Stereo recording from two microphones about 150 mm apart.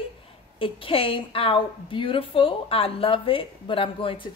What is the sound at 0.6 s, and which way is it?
A woman's voice, 35° left (ahead or behind).